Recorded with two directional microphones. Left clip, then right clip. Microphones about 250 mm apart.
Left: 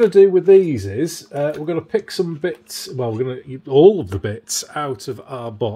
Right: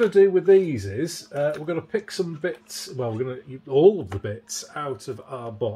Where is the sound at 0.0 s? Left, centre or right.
Left.